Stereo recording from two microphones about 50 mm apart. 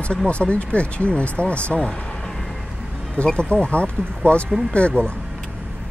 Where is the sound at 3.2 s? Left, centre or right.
Left.